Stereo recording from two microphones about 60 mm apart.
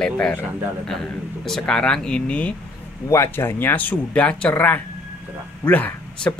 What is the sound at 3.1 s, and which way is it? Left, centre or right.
Speech, left.